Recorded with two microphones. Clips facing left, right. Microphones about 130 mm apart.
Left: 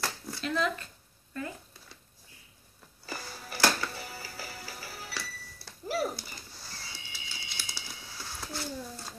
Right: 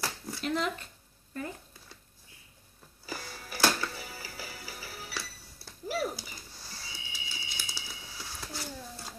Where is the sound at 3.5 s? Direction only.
10° right (ahead or behind).